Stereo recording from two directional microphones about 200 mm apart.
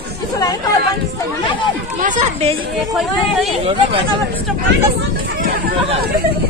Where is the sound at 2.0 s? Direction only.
35° right (ahead or behind).